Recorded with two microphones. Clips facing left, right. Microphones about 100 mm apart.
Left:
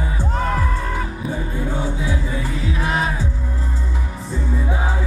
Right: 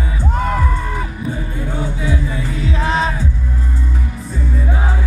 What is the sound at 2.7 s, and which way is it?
Music, 30° right (ahead or behind).